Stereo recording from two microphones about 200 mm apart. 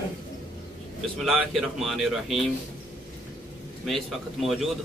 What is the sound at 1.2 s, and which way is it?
Speech, centre (ahead or behind).